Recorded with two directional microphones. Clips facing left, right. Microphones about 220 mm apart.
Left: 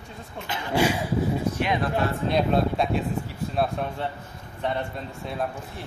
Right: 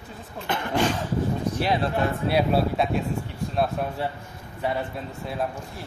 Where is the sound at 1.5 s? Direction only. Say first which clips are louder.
Right 1 dB; 35° right (ahead or behind).